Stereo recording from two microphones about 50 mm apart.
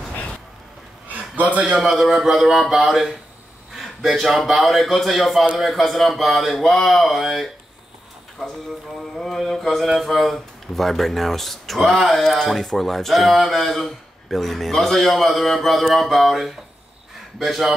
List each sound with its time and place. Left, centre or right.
1.0 s a sound: right
1.8 s speech: centre
9.1 s speech: centre